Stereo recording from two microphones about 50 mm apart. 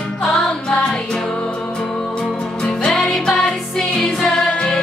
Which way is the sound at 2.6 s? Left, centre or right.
Centre.